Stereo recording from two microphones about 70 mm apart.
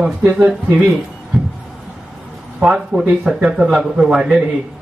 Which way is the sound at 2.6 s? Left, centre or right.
Centre.